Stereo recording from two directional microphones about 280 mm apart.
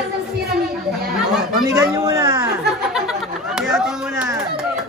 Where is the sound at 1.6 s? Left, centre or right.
Centre.